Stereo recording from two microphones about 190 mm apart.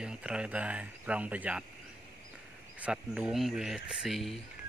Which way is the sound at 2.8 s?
5° right (ahead or behind).